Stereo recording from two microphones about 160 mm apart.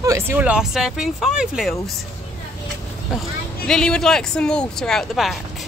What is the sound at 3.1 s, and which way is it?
Speech, 5° right (ahead or behind).